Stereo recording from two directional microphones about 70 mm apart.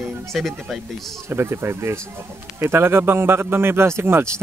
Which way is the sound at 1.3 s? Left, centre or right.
Right.